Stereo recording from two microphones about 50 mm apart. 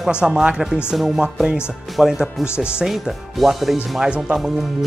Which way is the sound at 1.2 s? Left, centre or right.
Centre.